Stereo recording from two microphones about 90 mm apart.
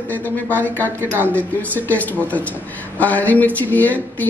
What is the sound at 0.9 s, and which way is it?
Speech, 25° right (ahead or behind).